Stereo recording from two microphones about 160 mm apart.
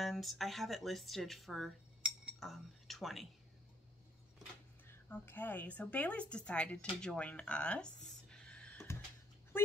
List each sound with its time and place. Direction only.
0.0 s speech: centre (ahead or behind)
4.8 s a woman's voice: 15° left (ahead or behind)